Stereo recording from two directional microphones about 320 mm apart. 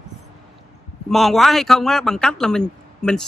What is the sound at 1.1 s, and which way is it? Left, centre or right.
A man's voice, centre.